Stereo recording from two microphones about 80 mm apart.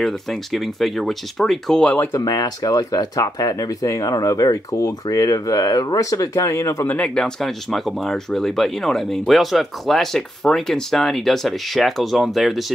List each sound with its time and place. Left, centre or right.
0.0 s speech: centre
2.1 s speech: left
7.2 s speech: centre